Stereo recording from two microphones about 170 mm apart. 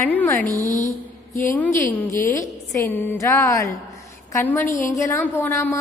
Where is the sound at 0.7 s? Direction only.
45° left (ahead or behind).